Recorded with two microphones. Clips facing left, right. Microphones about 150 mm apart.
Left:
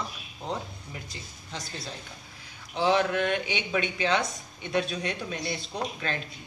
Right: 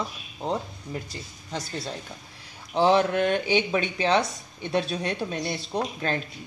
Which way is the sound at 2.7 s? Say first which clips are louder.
Right 4 dB; 40° right (ahead or behind).